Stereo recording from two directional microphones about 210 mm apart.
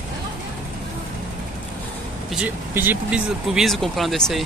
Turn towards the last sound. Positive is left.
turn(degrees=0)  # may be behind; listen again after turning